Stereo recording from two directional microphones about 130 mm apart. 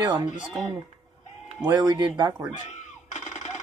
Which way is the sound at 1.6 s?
30° right (ahead or behind).